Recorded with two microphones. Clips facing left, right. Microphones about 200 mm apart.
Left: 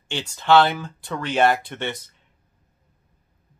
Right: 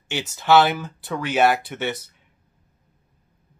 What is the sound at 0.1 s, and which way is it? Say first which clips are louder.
Speech: even; 5° right (ahead or behind).